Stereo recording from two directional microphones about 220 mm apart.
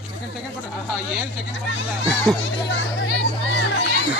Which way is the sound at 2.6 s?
50° left (ahead or behind).